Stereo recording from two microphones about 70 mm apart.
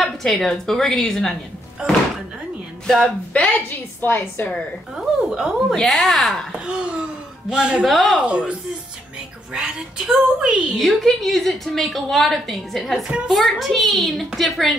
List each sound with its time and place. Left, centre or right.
0.0 s a woman's voice: centre
2.9 s speech: centre
3.4 s a woman's voice: left
4.9 s a woman's voice: centre
5.8 s a woman's voice: centre
6.6 s speech: centre
7.8 s a woman's voice: centre
8.2 s a woman's voice: centre
10.8 s a woman's voice: centre